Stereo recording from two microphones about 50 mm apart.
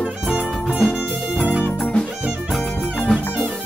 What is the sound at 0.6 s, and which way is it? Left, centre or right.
Music, left.